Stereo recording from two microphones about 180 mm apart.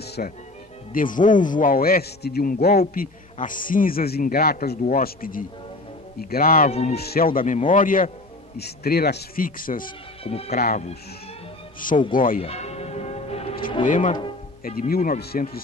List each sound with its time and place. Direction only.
0.0 s music: 65° left (ahead or behind)
0.9 s a man's voice: 50° left (ahead or behind)
6.7 s speech: 35° left (ahead or behind)
7.0 s a man's voice: 55° left (ahead or behind)
8.5 s a man's voice: 60° left (ahead or behind)
10.2 s speech: 35° left (ahead or behind)
10.6 s a man's voice: 50° left (ahead or behind)
12.1 s a man's voice: 50° left (ahead or behind)
12.4 s bell: 35° left (ahead or behind)
13.8 s a man's voice: 45° left (ahead or behind)